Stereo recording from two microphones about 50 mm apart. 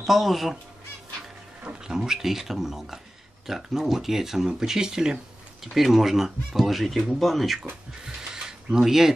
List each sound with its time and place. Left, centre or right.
0.0 s speech: centre
1.8 s speech: centre
8.0 s speech: centre